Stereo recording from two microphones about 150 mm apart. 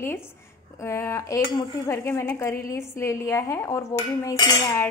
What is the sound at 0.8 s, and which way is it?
A woman's voice, 20° left (ahead or behind).